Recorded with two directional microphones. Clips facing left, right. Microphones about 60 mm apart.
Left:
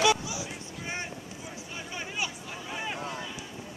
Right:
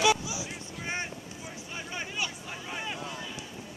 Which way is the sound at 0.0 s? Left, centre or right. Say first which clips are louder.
Even; centre.